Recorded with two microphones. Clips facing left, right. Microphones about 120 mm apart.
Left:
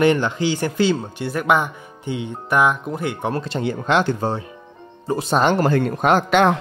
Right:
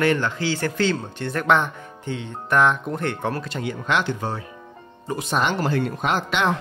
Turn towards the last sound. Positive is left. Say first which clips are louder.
# left 7 dB
turn(degrees=50)  # may be behind; listen again after turning